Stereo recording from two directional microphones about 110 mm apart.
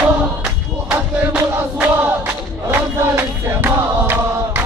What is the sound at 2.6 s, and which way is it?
Chant, 20° right (ahead or behind).